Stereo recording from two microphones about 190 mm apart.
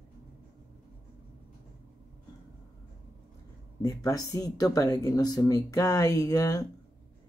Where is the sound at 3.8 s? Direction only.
15° left (ahead or behind).